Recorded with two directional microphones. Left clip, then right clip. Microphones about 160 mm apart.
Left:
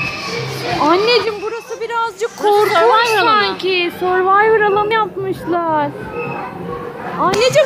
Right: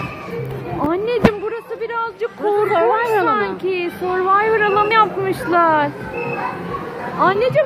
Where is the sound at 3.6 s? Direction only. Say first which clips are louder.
Left 4 dB; 20° left (ahead or behind).